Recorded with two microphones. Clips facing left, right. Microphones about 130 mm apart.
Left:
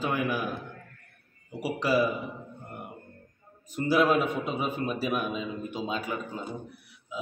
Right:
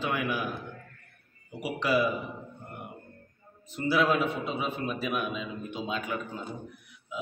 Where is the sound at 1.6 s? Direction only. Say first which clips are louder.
Left 1 dB; 40° left (ahead or behind).